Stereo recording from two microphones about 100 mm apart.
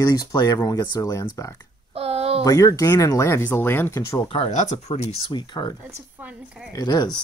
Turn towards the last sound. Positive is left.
turn(degrees=40)  # may be behind; listen again after turning